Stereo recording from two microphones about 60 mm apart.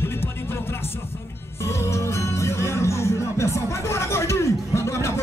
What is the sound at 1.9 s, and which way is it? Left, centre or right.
Music, left.